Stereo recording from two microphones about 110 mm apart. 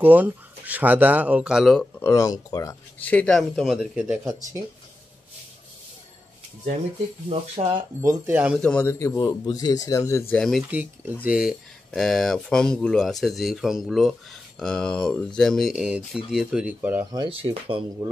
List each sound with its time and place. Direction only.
0.0 s speech: 15° right (ahead or behind)
2.0 s speech: 25° left (ahead or behind)
3.0 s speech: 15° left (ahead or behind)
3.3 s speech: centre (ahead or behind)
7.2 s speech: 60° right (ahead or behind)
8.3 s speech: 15° right (ahead or behind)
8.5 s a man's voice: 10° left (ahead or behind)
8.8 s speech: 30° left (ahead or behind)
10.3 s speech: 5° left (ahead or behind)
10.7 s speech: 15° right (ahead or behind)
17.0 s speech: 35° right (ahead or behind)
17.3 s speech: 55° right (ahead or behind)